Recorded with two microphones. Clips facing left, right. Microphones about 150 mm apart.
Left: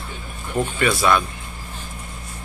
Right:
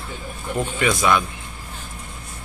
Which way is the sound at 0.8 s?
10° right (ahead or behind).